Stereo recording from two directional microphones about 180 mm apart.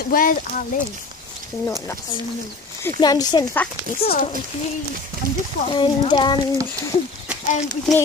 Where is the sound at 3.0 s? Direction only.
20° left (ahead or behind).